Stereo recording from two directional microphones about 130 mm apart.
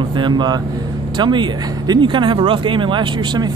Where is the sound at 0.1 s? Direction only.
35° right (ahead or behind).